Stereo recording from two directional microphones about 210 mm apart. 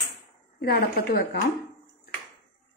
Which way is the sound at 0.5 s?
45° left (ahead or behind).